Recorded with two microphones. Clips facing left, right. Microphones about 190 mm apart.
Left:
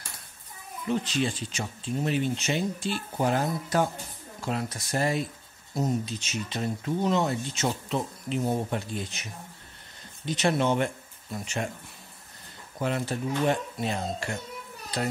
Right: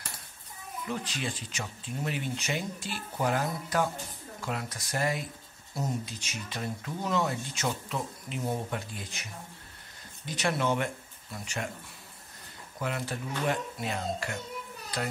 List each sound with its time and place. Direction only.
1.0 s speech: 25° left (ahead or behind)
10.2 s speech: 25° left (ahead or behind)
12.7 s speech: 30° left (ahead or behind)